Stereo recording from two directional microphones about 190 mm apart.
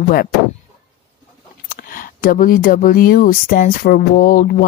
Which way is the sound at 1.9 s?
50° left (ahead or behind).